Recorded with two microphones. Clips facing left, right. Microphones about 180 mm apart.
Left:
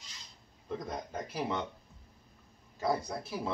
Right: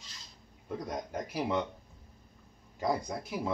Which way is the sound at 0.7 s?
10° right (ahead or behind).